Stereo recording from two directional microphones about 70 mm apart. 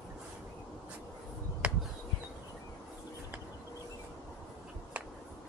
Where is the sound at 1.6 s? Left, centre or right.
Centre.